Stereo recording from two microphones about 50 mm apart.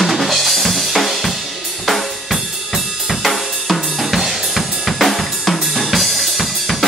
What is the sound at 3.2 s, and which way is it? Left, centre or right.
Drum kit, centre.